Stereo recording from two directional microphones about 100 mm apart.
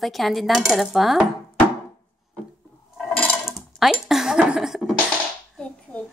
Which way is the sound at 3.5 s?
5° right (ahead or behind).